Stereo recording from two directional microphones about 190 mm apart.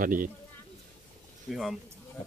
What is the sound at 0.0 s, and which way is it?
Speech, 45° right (ahead or behind).